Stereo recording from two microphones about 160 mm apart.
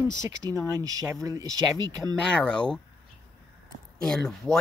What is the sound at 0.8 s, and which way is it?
Speech, 20° right (ahead or behind).